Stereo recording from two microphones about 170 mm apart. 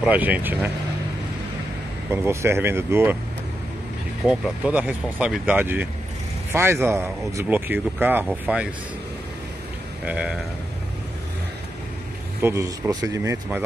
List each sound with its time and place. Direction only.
0.0 s speech: 10° right (ahead or behind)
2.2 s speech: 15° right (ahead or behind)
4.3 s speech: 5° right (ahead or behind)
10.0 s speech: 5° right (ahead or behind)
12.4 s speech: 15° right (ahead or behind)